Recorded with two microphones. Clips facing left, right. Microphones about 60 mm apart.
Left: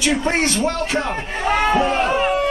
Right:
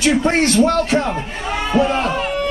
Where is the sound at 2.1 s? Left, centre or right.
Left.